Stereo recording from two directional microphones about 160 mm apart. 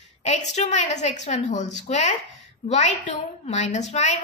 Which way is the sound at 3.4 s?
45° left (ahead or behind).